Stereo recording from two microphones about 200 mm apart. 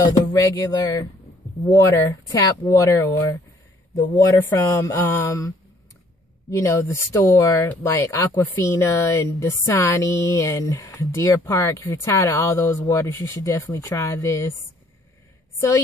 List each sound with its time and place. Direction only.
0.0 s speech: 15° left (ahead or behind)
6.5 s speech: 15° left (ahead or behind)